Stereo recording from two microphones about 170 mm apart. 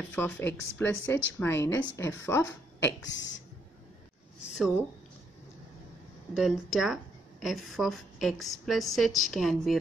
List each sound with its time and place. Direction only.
0.1 s speech: 10° left (ahead or behind)
2.8 s speech: 90° left
4.6 s a woman's voice: 5° right (ahead or behind)
6.3 s a woman's voice: centre (ahead or behind)